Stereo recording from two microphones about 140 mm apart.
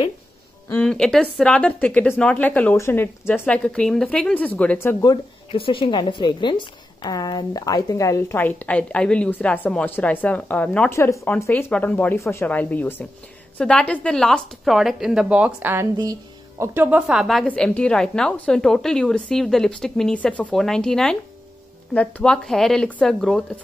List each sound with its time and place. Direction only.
0.7 s speech: 10° left (ahead or behind)
5.1 s a woman's voice: 40° left (ahead or behind); by 23.6 s 5° left (ahead or behind)